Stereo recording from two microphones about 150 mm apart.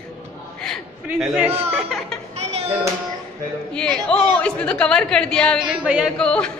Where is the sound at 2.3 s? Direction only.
45° right (ahead or behind).